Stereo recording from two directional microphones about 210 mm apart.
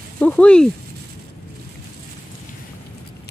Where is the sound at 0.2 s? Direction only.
5° left (ahead or behind).